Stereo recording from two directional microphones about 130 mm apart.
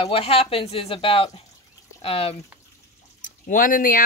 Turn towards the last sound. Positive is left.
turn(degrees=90)